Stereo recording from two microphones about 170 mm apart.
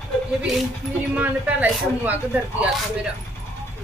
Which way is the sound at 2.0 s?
10° right (ahead or behind).